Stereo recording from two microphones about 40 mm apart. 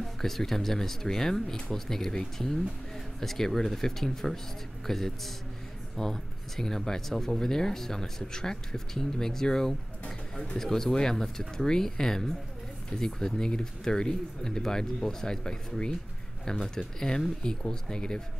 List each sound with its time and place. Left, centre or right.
0.0 s speech: centre